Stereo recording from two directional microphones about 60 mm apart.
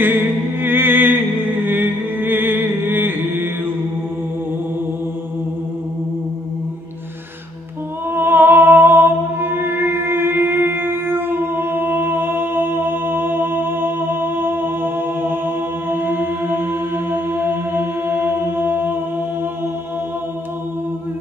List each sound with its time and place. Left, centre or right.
0.0 s music: right
1.6 s mantra: right
8.1 s music: right